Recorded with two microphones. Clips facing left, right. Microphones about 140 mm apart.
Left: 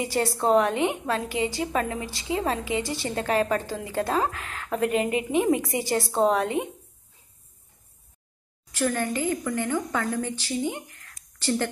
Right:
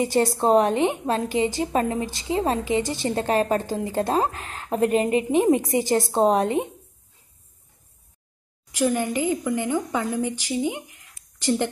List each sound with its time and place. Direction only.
0.0 s a woman's voice: 20° right (ahead or behind)
8.7 s a woman's voice: 15° right (ahead or behind)